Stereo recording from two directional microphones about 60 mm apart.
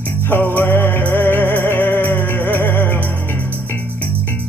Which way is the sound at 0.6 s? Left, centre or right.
Left.